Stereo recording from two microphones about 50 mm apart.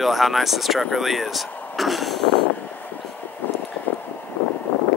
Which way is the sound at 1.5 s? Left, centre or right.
Left.